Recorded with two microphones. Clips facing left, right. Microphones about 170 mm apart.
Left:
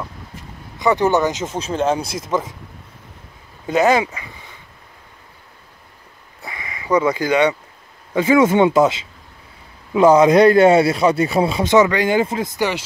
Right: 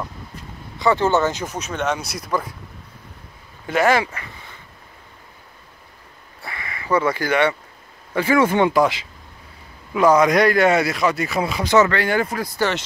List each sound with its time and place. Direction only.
0.7 s speech: 20° left (ahead or behind)
3.6 s speech: 20° left (ahead or behind)
6.4 s a sound: 20° left (ahead or behind)
8.1 s speech: 20° left (ahead or behind)